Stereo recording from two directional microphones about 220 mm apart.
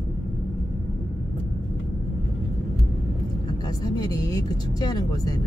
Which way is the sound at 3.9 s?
15° left (ahead or behind).